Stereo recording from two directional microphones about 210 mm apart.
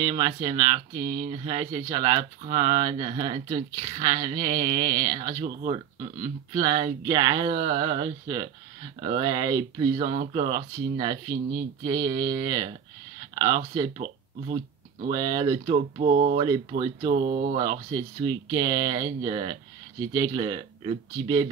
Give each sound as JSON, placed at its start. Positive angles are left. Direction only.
{"t": 0.0, "sound": "speech", "side_deg": -20}
{"t": 0.9, "sound": "a sound", "side_deg": -45}
{"t": 1.3, "sound": "speech", "side_deg": -25}
{"t": 15.0, "sound": "speech", "side_deg": -20}
{"t": 16.3, "sound": "speech", "side_deg": -20}
{"t": 17.0, "sound": "speech", "side_deg": -45}
{"t": 17.6, "sound": "speech", "side_deg": -20}